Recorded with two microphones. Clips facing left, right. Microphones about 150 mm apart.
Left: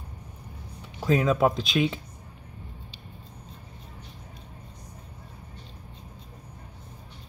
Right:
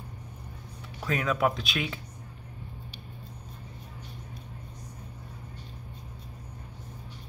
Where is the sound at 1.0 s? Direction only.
25° left (ahead or behind).